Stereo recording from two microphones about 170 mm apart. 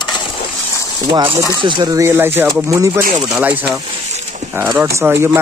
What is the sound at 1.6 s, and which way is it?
Speech, 25° right (ahead or behind).